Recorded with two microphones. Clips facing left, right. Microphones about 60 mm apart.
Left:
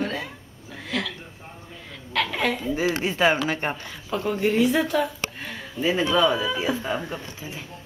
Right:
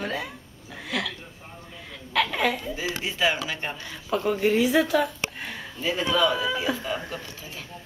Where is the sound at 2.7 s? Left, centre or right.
Left.